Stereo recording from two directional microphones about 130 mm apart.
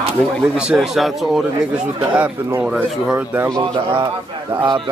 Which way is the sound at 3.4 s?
30° right (ahead or behind).